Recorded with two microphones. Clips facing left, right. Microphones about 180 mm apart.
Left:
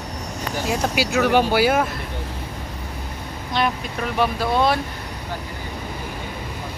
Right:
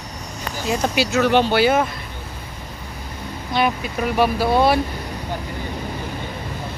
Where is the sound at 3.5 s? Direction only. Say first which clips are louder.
Right 3 dB; 5° right (ahead or behind).